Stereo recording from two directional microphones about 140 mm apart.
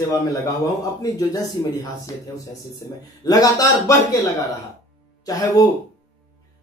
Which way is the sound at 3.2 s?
25° left (ahead or behind).